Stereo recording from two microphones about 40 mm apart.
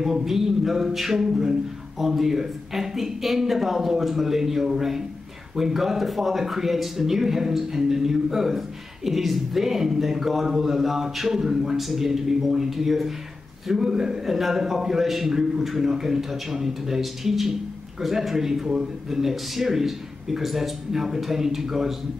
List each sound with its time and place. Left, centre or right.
0.0 s a man's voice: centre